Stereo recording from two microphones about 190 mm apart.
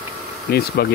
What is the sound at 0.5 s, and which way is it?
Speech, 55° left (ahead or behind).